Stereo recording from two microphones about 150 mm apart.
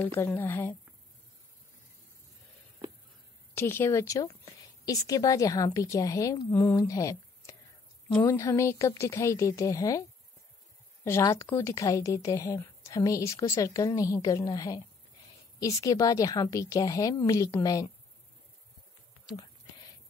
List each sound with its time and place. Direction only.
0.0 s speech: 15° left (ahead or behind)
3.5 s a woman's voice: 15° left (ahead or behind)
11.5 s a woman's voice: 20° left (ahead or behind)